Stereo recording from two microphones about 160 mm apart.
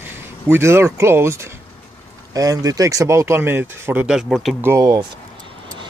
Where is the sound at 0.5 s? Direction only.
15° right (ahead or behind).